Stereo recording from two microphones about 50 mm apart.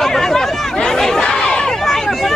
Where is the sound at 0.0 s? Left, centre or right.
Centre.